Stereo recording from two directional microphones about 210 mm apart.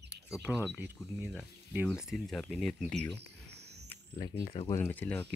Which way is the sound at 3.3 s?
50° right (ahead or behind).